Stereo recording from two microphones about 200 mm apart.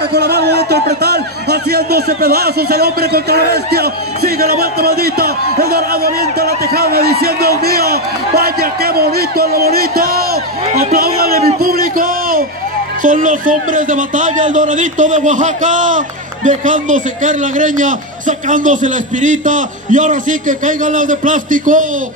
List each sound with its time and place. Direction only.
0.1 s a man's voice: 55° right (ahead or behind)